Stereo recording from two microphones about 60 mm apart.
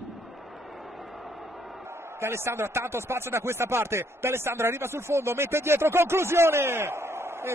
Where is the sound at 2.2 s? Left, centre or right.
Right.